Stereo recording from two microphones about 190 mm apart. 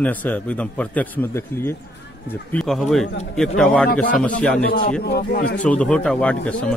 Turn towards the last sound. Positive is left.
turn(degrees=5)  # may be behind; listen again after turning